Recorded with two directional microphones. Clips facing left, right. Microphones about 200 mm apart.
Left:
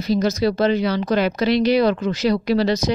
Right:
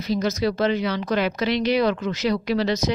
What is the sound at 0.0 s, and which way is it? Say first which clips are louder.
Speech: left 4 dB; 35° left (ahead or behind).